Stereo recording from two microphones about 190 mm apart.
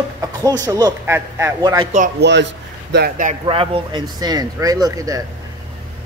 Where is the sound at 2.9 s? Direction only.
50° right (ahead or behind).